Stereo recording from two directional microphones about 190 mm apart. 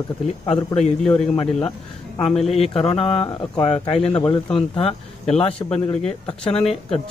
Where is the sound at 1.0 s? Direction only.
5° left (ahead or behind).